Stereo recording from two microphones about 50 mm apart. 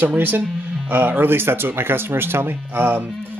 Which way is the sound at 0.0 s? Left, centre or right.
Right.